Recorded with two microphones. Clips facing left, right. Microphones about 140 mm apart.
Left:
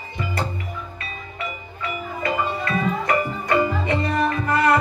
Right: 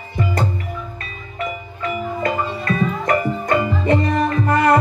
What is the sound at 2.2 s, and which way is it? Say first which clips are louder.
Music: left 1 dB; 45° right (ahead or behind).